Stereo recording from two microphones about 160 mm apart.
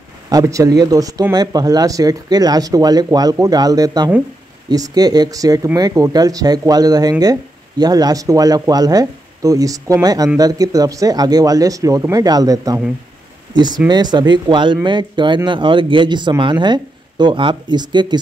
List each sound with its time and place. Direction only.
0.3 s speech: 20° right (ahead or behind)
13.8 s speech: 25° right (ahead or behind)